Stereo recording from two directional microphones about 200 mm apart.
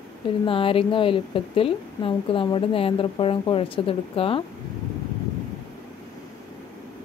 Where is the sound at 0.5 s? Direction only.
25° left (ahead or behind).